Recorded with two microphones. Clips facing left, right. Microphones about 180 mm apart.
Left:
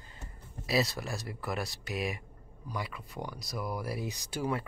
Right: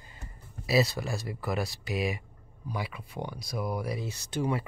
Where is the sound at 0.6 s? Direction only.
Centre (ahead or behind).